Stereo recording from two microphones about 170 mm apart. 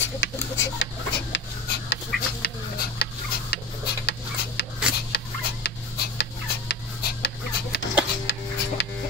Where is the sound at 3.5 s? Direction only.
75° left (ahead or behind).